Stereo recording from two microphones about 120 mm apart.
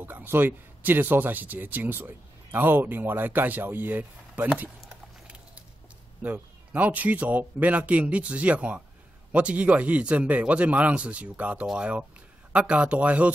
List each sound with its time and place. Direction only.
0.0 s speech: 15° right (ahead or behind)
6.2 s speech: 15° right (ahead or behind)